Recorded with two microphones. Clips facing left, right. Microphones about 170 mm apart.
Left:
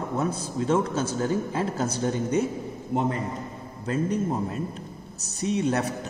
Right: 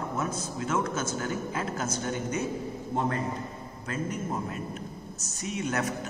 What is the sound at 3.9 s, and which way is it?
A man's voice, 30° left (ahead or behind).